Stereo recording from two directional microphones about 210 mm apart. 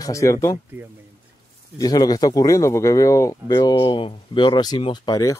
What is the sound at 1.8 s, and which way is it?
Speech, 20° left (ahead or behind).